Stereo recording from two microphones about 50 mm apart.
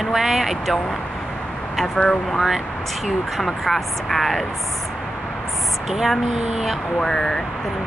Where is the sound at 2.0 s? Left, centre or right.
Left.